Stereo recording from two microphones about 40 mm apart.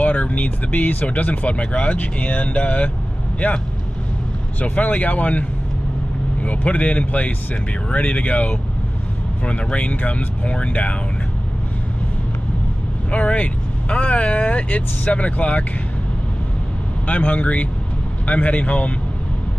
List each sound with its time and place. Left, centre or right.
0.0 s speech: left
13.1 s speech: left
17.1 s speech: left